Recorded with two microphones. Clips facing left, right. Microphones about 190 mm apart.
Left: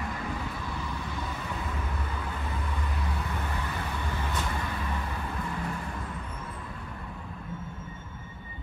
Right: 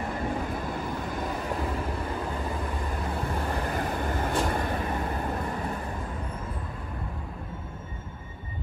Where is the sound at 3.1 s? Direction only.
50° right (ahead or behind).